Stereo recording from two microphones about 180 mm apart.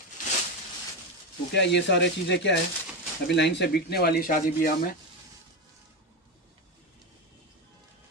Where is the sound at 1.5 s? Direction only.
75° left (ahead or behind); by 4.7 s 50° left (ahead or behind).